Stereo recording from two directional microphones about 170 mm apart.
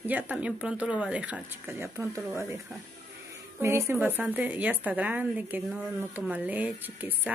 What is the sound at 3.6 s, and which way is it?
A woman's voice, 15° right (ahead or behind).